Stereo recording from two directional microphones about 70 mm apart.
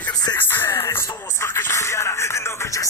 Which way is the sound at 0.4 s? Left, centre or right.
Left.